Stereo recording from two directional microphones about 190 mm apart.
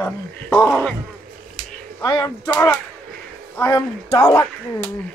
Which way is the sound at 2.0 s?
20° left (ahead or behind).